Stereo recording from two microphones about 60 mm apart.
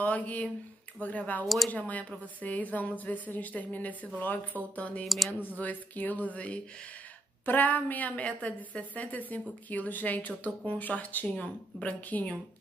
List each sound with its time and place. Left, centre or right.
0.0 s a woman's voice: left
5.0 s speech: centre
5.6 s a woman's voice: left